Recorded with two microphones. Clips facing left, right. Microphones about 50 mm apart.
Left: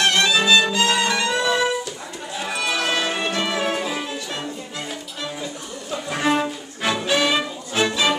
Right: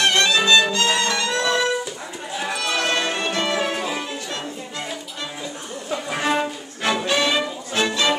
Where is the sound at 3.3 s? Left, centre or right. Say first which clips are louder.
Even; centre.